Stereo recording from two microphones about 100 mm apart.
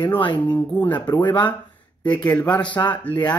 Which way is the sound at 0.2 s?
50° left (ahead or behind).